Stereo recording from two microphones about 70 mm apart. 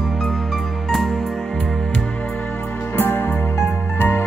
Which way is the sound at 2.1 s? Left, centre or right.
Left.